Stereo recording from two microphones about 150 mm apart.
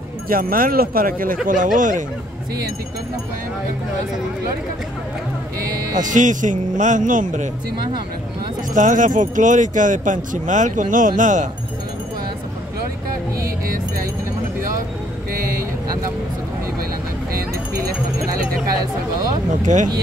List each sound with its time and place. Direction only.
0.3 s speech: 75° right (ahead or behind)
5.9 s speech: 55° right (ahead or behind)
8.7 s speech: 60° right (ahead or behind)
17.3 s a sound: 90° right
19.6 s speech: 55° right (ahead or behind)